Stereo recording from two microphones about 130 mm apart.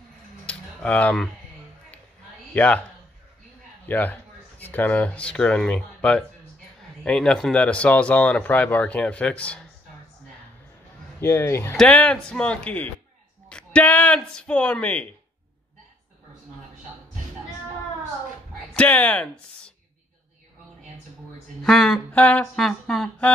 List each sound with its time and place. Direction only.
0.5 s a sound: 10° left (ahead or behind)
2.5 s speech: 15° left (ahead or behind)
3.8 s speech: 15° left (ahead or behind)
11.1 s speech: 20° left (ahead or behind)
11.7 s speech: 5° left (ahead or behind)
18.7 s speech: 10° left (ahead or behind)
21.6 s speech: centre (ahead or behind)